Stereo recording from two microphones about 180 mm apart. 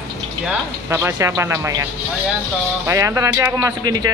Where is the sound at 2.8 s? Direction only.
15° right (ahead or behind).